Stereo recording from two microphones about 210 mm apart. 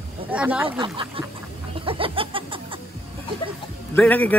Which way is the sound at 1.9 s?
25° right (ahead or behind).